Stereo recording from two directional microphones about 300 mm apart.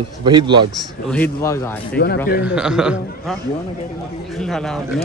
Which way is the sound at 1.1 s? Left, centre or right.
Centre.